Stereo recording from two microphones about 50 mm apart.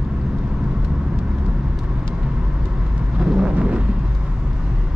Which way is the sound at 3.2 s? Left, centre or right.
Centre.